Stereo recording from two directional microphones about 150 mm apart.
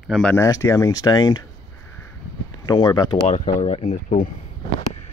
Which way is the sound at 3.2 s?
55° left (ahead or behind).